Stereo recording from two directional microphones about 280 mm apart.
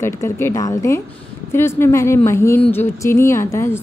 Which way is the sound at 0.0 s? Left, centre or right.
Centre.